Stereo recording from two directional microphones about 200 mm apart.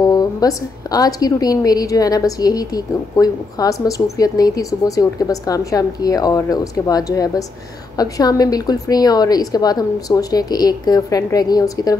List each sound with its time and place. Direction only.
0.1 s a woman's voice: 20° left (ahead or behind)